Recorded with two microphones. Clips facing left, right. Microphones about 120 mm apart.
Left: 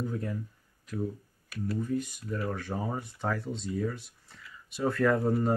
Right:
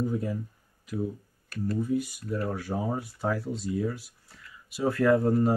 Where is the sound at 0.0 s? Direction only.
10° right (ahead or behind).